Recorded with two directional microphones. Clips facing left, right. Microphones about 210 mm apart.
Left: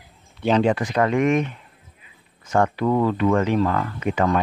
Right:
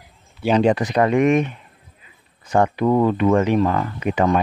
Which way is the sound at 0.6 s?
20° right (ahead or behind).